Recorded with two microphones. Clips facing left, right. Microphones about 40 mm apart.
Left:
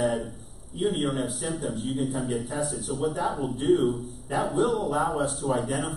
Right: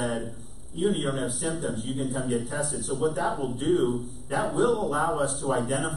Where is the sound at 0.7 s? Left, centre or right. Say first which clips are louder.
Even; centre.